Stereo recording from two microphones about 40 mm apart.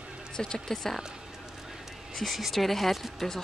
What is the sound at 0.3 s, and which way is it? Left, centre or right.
Speech, centre.